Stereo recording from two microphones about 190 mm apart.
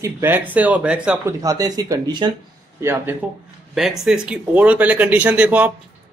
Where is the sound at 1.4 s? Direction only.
20° right (ahead or behind).